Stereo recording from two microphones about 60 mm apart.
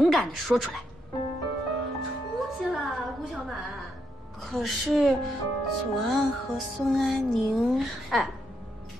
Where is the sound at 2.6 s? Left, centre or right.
Centre.